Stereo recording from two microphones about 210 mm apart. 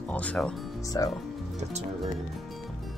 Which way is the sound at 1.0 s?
15° left (ahead or behind).